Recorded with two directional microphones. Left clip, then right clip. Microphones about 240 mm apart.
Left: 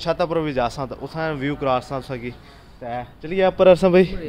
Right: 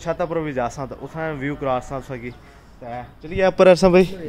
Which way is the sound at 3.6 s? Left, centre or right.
Right.